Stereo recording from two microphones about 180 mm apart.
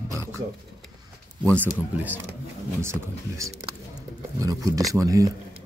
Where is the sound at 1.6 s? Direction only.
10° right (ahead or behind).